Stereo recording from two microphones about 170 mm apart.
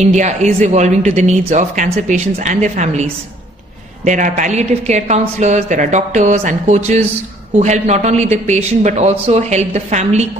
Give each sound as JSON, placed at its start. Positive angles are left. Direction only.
{"t": 0.0, "sound": "a woman's voice", "side_deg": -45}